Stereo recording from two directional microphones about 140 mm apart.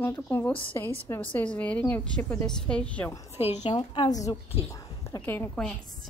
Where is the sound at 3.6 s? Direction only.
35° left (ahead or behind); by 5.4 s 20° left (ahead or behind).